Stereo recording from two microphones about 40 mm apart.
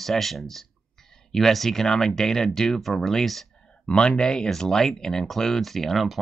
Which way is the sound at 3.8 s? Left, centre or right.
Left.